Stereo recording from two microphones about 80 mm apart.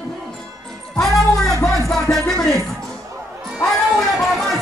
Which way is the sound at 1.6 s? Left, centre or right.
Centre.